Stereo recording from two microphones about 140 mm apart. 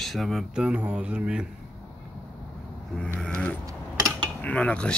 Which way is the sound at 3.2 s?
5° left (ahead or behind).